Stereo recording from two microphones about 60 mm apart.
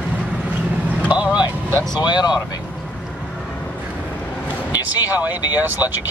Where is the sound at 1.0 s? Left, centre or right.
Centre.